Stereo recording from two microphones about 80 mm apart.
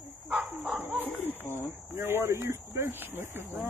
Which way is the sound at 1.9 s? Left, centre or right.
Right.